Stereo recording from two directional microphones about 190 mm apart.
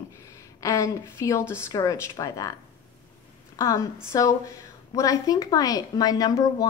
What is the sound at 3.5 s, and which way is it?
A woman's voice, 15° left (ahead or behind).